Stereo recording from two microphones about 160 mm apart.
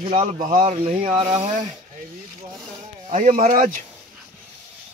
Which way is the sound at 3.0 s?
50° right (ahead or behind).